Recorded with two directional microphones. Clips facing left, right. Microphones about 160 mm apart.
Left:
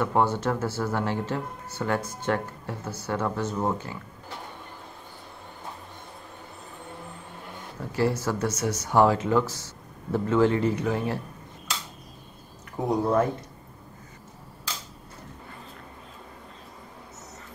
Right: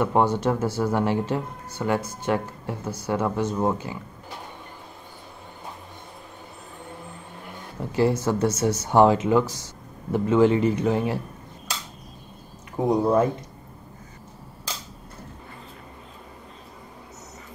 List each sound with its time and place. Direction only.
0.0 s speech: 15° right (ahead or behind)
7.9 s speech: 20° right (ahead or behind)
12.7 s speech: 20° right (ahead or behind)